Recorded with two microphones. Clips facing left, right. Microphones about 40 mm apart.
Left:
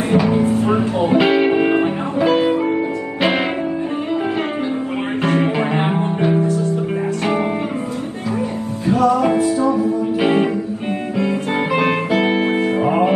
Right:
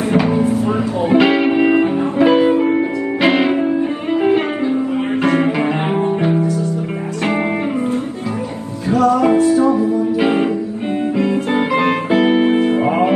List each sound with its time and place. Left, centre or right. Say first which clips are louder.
1.1 s music: right 3 dB; centre
2.1 s music: right 3 dB; right
3.2 s music: right 3 dB; centre
5.2 s music: right 2 dB; right
6.4 s music: even; left
9.0 s music: right 3 dB; right
11.1 s music: right 2 dB; right